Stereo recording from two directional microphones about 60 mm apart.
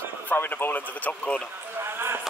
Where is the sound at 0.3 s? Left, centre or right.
Left.